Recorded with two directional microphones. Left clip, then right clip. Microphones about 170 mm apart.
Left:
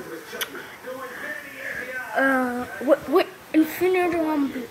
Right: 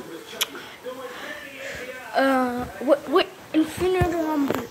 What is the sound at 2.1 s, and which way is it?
Speech, 5° right (ahead or behind).